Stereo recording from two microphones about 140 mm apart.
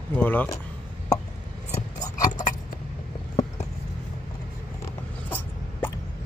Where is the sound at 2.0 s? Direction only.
25° left (ahead or behind).